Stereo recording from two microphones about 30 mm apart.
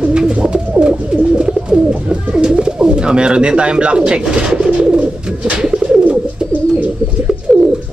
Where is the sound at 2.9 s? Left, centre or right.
Right.